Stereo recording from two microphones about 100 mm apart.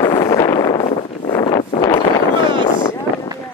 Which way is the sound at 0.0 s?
40° left (ahead or behind).